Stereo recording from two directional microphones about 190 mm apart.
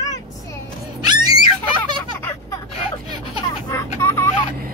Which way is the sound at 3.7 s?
15° left (ahead or behind).